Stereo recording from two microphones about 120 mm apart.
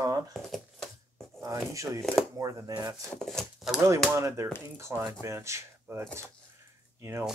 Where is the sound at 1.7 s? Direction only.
25° right (ahead or behind).